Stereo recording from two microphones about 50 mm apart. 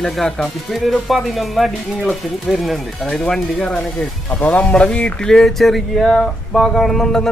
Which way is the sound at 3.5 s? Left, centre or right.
Left.